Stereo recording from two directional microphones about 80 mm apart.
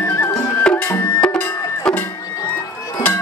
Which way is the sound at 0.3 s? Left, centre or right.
Left.